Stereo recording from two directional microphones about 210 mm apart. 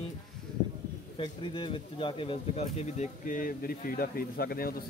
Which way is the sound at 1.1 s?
25° left (ahead or behind).